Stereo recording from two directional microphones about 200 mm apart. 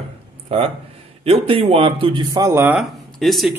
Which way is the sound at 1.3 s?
30° right (ahead or behind).